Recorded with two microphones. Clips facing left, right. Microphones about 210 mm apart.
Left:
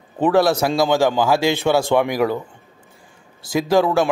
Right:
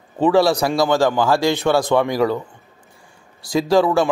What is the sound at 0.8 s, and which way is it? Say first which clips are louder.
Speech: even; 15° left (ahead or behind).